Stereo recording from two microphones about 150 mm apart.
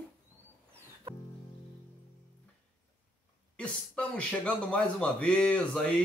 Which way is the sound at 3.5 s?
5° left (ahead or behind).